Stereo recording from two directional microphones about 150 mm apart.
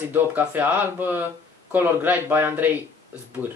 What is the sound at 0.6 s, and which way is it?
Speech, 10° right (ahead or behind).